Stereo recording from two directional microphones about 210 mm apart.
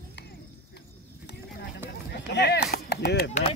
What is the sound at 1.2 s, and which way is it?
Clip-clop, 50° left (ahead or behind).